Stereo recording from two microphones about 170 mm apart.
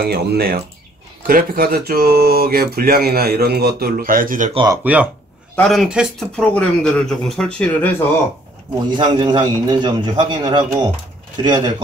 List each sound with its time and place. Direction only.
0.0 s speech: 65° right (ahead or behind)
4.9 s speech: 10° right (ahead or behind)
5.6 s speech: centre (ahead or behind)
8.9 s a man's voice: 25° right (ahead or behind)